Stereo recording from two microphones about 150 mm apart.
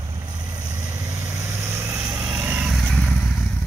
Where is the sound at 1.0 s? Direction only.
20° right (ahead or behind).